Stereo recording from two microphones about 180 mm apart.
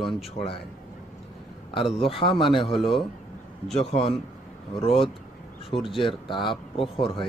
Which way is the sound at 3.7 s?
30° left (ahead or behind).